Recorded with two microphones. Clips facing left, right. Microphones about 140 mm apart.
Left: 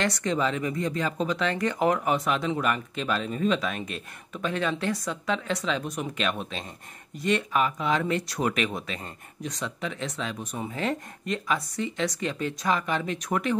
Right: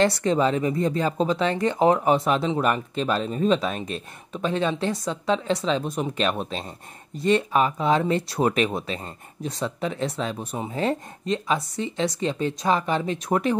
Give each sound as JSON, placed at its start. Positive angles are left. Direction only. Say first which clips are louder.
{"t": 0.0, "sound": "speech", "louder": "right 6 dB", "side_deg": -35}